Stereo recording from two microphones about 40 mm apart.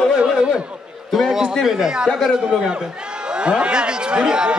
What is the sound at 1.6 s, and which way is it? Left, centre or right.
A man's voice, centre.